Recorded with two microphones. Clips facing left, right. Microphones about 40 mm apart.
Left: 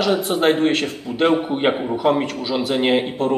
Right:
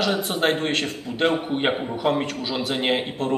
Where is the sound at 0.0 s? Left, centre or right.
Centre.